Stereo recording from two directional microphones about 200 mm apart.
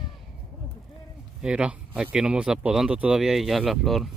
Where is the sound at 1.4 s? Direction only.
5° right (ahead or behind).